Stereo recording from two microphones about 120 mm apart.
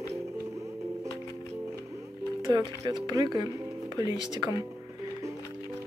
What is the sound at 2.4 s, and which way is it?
Speech, 35° right (ahead or behind).